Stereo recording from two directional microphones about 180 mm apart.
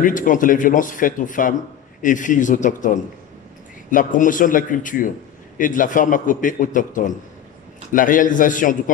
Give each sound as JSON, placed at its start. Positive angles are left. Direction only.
{"t": 0.0, "sound": "a man's voice", "side_deg": 45}